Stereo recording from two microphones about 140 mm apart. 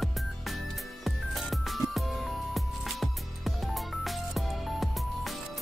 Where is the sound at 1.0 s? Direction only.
Centre (ahead or behind).